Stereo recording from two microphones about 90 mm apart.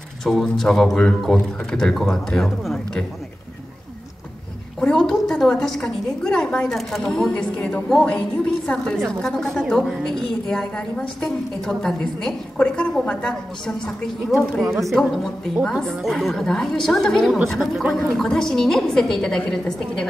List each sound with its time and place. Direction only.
0.2 s a woman's voice: 5° left (ahead or behind)
4.7 s a woman's voice: 5° left (ahead or behind)